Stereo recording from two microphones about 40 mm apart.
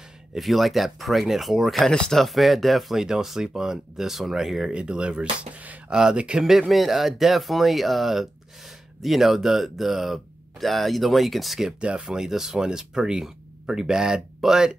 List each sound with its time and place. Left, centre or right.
0.3 s speech: centre
1.8 s speech: centre
2.2 s speech: centre
4.7 s speech: right
6.7 s speech: centre
11.8 s speech: right
12.1 s speech: centre